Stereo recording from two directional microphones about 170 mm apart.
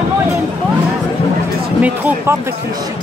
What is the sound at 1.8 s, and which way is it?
Speech, 10° right (ahead or behind).